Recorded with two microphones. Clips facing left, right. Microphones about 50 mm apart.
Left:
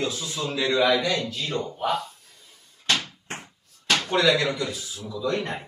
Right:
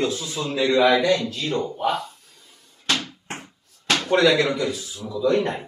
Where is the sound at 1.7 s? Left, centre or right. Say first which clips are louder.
Even; centre.